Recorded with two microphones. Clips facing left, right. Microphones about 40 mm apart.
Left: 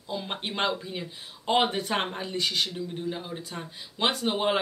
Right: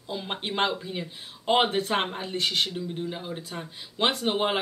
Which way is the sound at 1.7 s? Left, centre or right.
Right.